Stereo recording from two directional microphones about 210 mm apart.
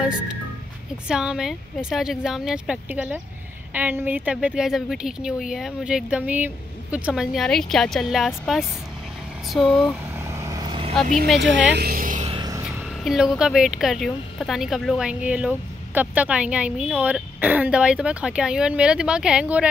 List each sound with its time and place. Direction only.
1.0 s speech: 5° right (ahead or behind)
9.5 s speech: centre (ahead or behind)
10.1 s vehicle: 15° right (ahead or behind)
11.3 s speech: 60° right (ahead or behind)
11.7 s a sound: 45° right (ahead or behind)
12.4 s a sound: 20° right (ahead or behind)
12.6 s speech: 5° right (ahead or behind)